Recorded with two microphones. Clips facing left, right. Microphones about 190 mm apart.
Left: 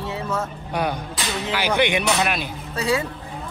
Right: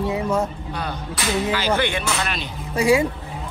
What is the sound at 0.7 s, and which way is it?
A man's voice, 10° left (ahead or behind).